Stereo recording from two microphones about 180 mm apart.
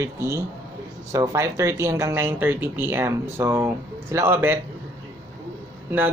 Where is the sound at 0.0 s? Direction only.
15° right (ahead or behind).